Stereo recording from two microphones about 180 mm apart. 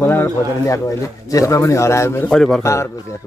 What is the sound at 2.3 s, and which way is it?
Speech, 5° left (ahead or behind).